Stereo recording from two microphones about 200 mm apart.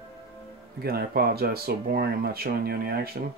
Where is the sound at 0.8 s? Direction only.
50° right (ahead or behind).